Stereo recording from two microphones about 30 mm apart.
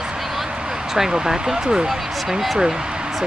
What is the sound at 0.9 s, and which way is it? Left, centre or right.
Speech, centre.